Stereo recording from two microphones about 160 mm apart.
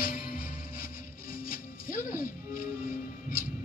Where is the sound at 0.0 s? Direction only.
60° left (ahead or behind).